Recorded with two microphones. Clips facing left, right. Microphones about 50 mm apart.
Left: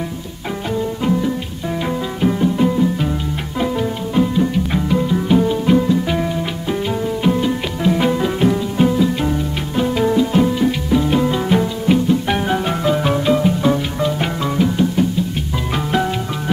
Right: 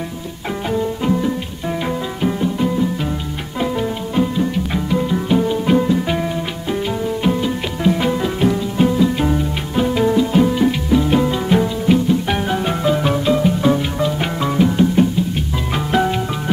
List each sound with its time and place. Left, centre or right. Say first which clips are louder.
1.0 s music: even; centre
7.2 s music: left 3 dB; centre